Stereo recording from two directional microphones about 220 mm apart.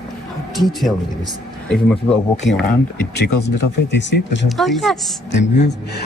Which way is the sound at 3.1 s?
45° left (ahead or behind).